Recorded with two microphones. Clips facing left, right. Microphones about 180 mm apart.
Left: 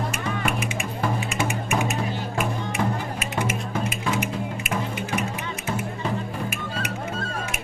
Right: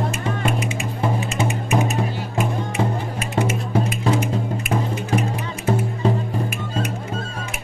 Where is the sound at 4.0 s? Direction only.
35° right (ahead or behind).